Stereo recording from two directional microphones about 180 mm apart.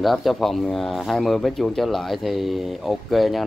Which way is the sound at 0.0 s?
Centre (ahead or behind).